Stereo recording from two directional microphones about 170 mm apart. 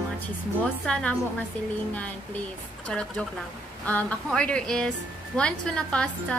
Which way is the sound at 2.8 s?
5° left (ahead or behind).